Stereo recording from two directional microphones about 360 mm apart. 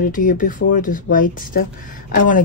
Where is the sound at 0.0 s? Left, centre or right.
Left.